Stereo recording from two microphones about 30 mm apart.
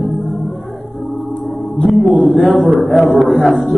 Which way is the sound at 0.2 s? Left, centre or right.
Centre.